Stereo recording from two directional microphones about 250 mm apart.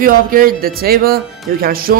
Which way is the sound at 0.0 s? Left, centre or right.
Right.